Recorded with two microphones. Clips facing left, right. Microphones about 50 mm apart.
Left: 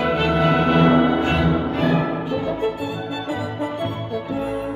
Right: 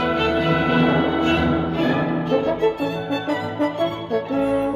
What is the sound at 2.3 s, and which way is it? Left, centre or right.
Violin, right.